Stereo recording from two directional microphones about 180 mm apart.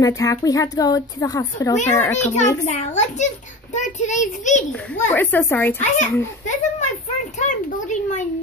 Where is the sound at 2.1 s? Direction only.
40° left (ahead or behind).